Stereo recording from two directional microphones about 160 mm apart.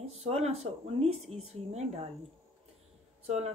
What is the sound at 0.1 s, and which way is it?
Speech, 40° right (ahead or behind).